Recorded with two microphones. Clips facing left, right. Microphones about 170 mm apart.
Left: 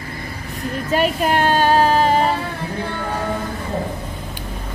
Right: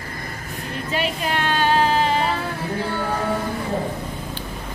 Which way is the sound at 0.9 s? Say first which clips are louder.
Left 7 dB; 45° left (ahead or behind).